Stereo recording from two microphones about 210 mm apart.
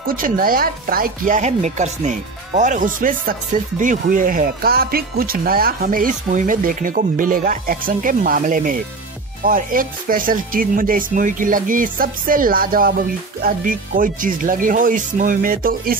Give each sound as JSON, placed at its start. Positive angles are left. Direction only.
{"t": 0.0, "sound": "speech", "side_deg": -45}